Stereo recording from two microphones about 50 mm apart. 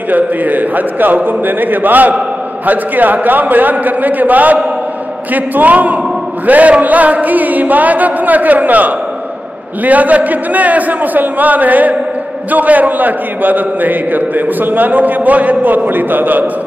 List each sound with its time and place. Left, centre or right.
0.1 s a man's voice: right